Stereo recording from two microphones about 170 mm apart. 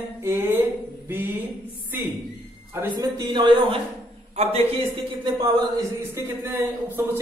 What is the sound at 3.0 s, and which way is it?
Speech, 25° right (ahead or behind).